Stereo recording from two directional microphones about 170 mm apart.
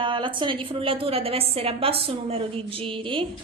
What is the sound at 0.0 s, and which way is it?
A woman's voice, 30° right (ahead or behind).